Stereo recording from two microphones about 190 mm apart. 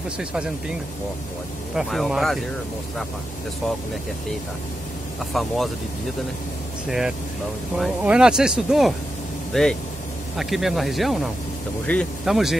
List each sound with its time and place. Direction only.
0.2 s speech: 5° right (ahead or behind)
1.8 s speech: centre (ahead or behind)
5.3 s speech: centre (ahead or behind)
6.9 s speech: centre (ahead or behind)